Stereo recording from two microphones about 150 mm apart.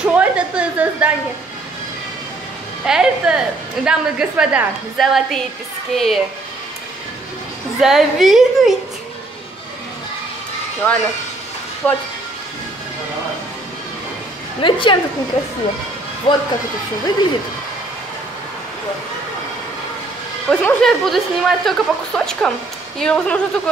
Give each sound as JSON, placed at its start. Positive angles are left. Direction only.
{"t": 0.0, "sound": "a sound", "side_deg": -10}
{"t": 2.8, "sound": "a woman's voice", "side_deg": -5}
{"t": 7.8, "sound": "a woman's voice", "side_deg": 0}
{"t": 10.8, "sound": "speech", "side_deg": 10}
{"t": 14.6, "sound": "a woman's voice", "side_deg": 35}
{"t": 16.3, "sound": "a woman's voice", "side_deg": 35}
{"t": 20.4, "sound": "a woman's voice", "side_deg": 5}